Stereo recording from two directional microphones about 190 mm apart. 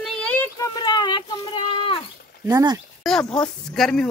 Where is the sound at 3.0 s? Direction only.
5° left (ahead or behind).